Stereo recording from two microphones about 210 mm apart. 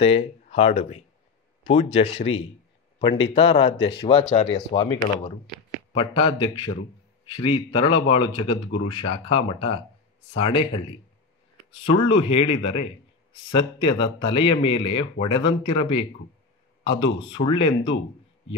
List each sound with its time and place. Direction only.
0.0 s speech: 30° left (ahead or behind)
4.2 s speech: 40° left (ahead or behind)
4.5 s speech: 20° left (ahead or behind)
11.7 s speech: 25° left (ahead or behind)